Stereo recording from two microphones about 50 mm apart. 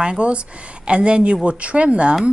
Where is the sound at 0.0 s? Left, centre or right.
Centre.